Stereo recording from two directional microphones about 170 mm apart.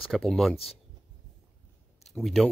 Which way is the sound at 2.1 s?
Centre (ahead or behind).